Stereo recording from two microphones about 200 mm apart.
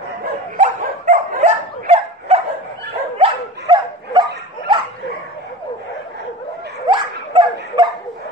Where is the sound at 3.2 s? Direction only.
25° right (ahead or behind).